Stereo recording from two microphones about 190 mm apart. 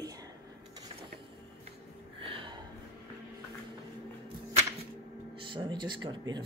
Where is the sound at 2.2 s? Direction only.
30° right (ahead or behind).